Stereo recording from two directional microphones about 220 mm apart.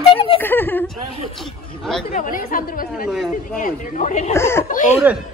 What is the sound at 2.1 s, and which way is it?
Speech, 40° left (ahead or behind).